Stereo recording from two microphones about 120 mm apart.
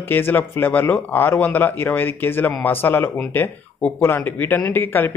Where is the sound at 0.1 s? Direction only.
15° left (ahead or behind).